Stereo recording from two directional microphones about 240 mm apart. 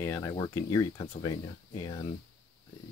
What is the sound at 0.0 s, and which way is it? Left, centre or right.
Speech, centre.